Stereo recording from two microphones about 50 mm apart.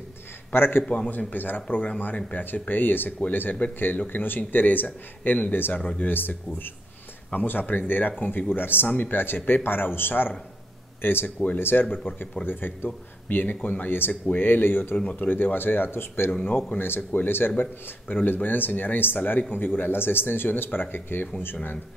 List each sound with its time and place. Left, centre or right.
0.5 s speech: left
0.8 s speech: left
1.1 s speech: left
5.8 s speech: left
6.0 s speech: left
11.3 s speech: left
11.6 s speech: left